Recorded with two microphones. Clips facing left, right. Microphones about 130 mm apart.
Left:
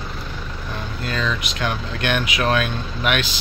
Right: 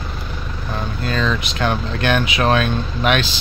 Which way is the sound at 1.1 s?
35° right (ahead or behind).